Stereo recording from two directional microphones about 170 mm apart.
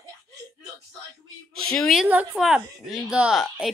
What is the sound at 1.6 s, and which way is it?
A woman's voice, 5° left (ahead or behind).